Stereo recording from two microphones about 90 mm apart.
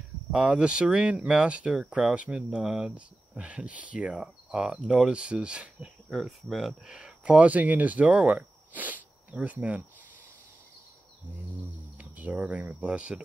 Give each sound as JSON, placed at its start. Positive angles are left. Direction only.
{"t": 0.3, "sound": "speech", "side_deg": -10}
{"t": 12.0, "sound": "speech", "side_deg": -15}